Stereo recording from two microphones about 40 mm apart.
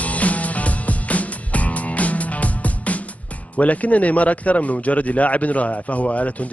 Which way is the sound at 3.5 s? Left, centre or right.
Left.